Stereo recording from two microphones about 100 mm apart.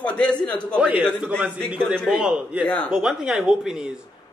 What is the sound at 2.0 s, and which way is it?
A man's voice, 5° right (ahead or behind).